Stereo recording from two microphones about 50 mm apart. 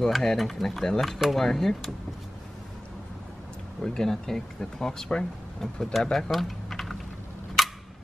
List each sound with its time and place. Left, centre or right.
0.1 s speech: centre
3.8 s speech: centre
6.1 s typing: centre
7.6 s camera: centre